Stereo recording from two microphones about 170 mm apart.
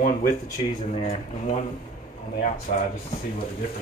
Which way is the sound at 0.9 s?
40° left (ahead or behind).